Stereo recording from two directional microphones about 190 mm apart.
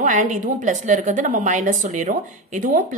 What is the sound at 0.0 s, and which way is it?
A woman's voice, 40° right (ahead or behind).